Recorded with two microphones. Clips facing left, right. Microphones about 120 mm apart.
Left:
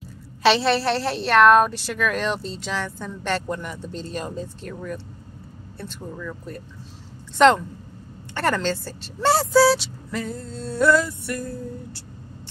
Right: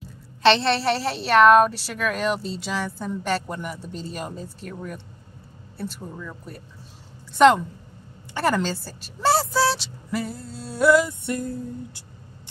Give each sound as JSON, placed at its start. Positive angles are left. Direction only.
{"t": 0.4, "sound": "a woman's voice", "side_deg": 5}
{"t": 7.3, "sound": "a woman's voice", "side_deg": -5}